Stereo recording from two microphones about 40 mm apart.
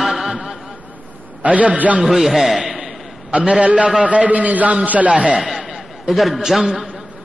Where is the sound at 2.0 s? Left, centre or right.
Centre.